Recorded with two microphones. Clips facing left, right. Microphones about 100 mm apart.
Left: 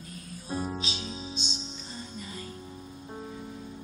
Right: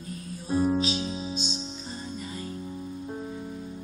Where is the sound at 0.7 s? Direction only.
40° right (ahead or behind).